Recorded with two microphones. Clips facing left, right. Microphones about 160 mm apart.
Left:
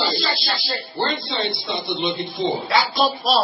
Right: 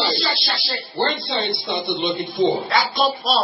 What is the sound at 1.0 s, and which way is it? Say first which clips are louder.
Speech: right 2 dB; 60° right (ahead or behind).